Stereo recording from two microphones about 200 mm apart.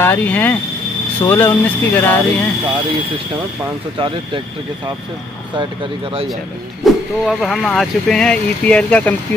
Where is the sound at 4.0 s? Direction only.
25° right (ahead or behind).